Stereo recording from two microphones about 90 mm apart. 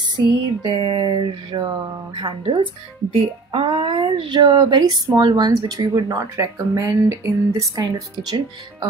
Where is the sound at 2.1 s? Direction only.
65° right (ahead or behind); by 7.1 s 35° right (ahead or behind).